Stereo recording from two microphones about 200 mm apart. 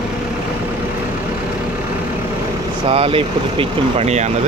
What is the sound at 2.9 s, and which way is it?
Speech, 30° right (ahead or behind).